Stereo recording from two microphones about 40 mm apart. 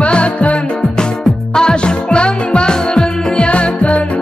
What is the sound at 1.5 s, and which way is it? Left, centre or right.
Music, left.